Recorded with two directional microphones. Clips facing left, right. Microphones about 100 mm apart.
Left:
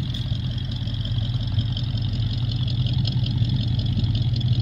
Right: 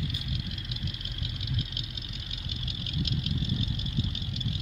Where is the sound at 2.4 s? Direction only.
50° left (ahead or behind).